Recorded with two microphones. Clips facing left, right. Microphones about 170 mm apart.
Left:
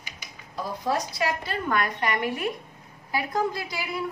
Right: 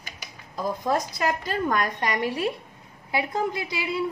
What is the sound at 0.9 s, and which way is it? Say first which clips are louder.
A woman's voice: even; 45° right (ahead or behind).